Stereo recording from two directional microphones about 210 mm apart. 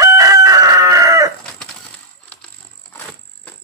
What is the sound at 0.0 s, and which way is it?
Chicken, 15° right (ahead or behind).